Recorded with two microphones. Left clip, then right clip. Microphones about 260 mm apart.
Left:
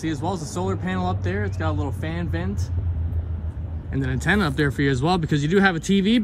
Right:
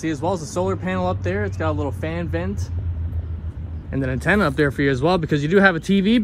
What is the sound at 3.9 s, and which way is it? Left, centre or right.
Speech, centre.